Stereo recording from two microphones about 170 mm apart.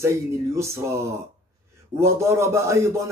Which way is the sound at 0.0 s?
15° right (ahead or behind).